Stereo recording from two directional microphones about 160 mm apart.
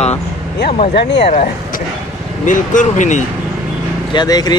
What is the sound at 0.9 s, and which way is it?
Speech, 85° left.